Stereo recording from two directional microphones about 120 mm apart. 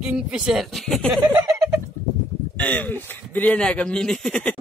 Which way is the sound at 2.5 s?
10° left (ahead or behind).